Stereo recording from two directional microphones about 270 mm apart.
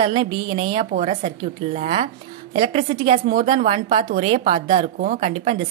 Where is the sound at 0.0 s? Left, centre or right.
Centre.